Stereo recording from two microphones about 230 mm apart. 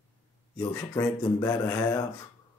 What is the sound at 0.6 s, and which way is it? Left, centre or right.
Speech, centre.